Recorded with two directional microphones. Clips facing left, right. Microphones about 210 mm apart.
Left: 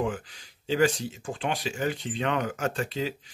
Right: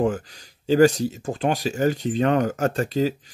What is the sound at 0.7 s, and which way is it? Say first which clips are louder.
Speech: right 8 dB; 40° right (ahead or behind).